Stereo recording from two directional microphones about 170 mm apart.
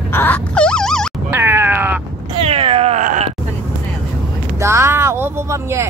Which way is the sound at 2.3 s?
35° right (ahead or behind).